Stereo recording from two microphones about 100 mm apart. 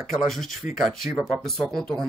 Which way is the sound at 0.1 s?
Centre (ahead or behind).